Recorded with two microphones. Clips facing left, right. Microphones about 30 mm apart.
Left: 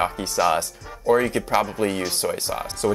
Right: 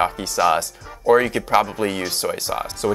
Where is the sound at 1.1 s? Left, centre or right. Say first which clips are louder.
Right 3 dB; right.